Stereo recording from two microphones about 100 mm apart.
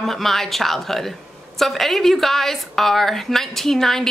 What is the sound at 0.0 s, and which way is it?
A woman's voice, centre (ahead or behind).